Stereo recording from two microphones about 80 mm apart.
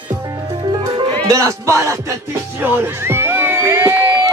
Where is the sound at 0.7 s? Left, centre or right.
Right.